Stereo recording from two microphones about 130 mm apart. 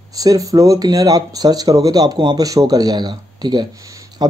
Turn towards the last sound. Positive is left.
turn(degrees=-30)  # may be behind; listen again after turning